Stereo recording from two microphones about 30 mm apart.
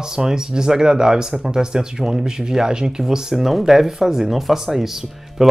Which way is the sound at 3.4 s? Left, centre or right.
Centre.